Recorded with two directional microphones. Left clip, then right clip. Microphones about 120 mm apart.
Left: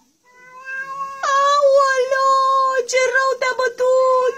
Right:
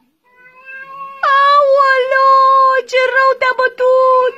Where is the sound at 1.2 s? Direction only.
45° right (ahead or behind).